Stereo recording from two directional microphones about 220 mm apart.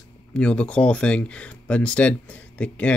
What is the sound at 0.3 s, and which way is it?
Speech, 5° left (ahead or behind).